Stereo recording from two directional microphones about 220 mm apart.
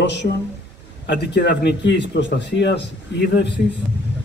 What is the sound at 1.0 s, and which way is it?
A man's voice, 50° left (ahead or behind).